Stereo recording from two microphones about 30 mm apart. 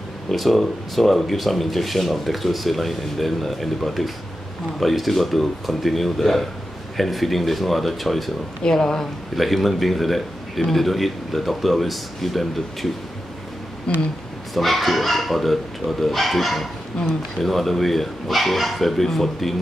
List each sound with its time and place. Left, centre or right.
0.3 s speech: centre
8.6 s speech: left
9.3 s speech: centre
13.9 s speech: left
14.5 s speech: centre